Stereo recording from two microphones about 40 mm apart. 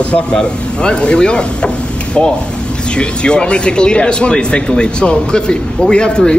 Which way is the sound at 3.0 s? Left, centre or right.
Left.